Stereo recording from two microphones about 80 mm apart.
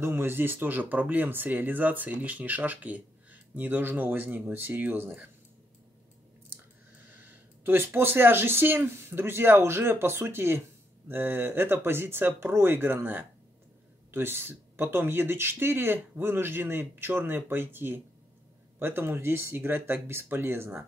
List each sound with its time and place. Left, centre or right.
0.0 s speech: right
7.2 s speech: right